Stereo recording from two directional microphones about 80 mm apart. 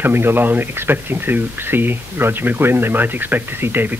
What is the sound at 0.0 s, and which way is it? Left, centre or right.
Speech, right.